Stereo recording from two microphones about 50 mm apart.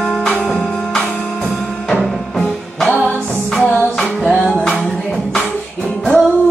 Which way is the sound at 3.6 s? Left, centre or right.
Left.